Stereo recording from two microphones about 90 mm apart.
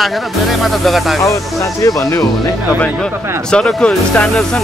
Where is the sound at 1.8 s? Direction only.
40° left (ahead or behind).